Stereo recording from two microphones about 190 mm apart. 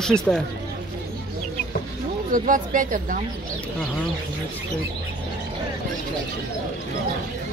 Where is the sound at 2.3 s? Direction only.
45° right (ahead or behind).